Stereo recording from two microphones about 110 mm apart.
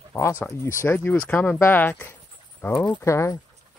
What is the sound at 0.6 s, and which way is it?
Speech, 25° left (ahead or behind).